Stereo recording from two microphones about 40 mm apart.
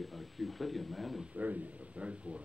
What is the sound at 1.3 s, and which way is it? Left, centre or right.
Speech, right.